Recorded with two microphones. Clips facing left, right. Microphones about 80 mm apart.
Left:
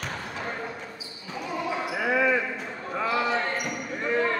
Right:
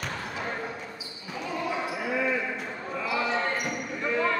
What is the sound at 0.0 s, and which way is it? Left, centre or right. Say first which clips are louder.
Basketball bounce: even; centre.